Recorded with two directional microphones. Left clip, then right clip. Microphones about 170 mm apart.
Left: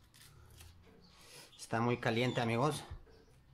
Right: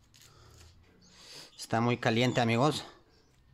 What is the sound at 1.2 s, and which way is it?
Speech, 35° right (ahead or behind).